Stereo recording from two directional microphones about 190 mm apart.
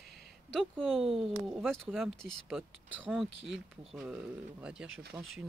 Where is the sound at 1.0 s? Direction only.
30° right (ahead or behind).